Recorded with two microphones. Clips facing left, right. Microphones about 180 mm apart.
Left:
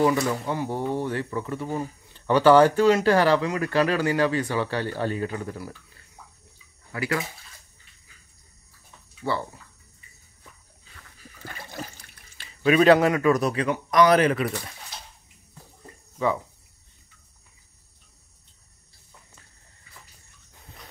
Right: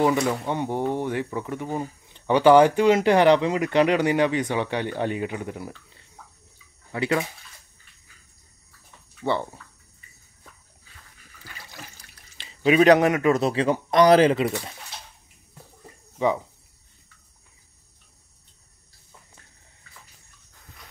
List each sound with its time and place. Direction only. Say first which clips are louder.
0.0 s speech: right 1 dB; 20° right (ahead or behind)
9.2 s a man's voice: right 3 dB; 20° right (ahead or behind)
11.4 s water: left 7 dB; 50° left (ahead or behind)
12.4 s a man's voice: right 1 dB; 20° right (ahead or behind)